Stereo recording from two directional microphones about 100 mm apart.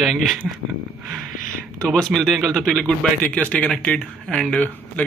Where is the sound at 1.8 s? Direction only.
5° left (ahead or behind).